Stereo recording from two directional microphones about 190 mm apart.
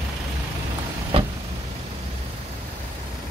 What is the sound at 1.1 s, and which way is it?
Vehicle, 30° right (ahead or behind).